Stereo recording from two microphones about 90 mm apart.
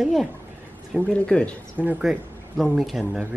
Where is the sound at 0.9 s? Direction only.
15° left (ahead or behind).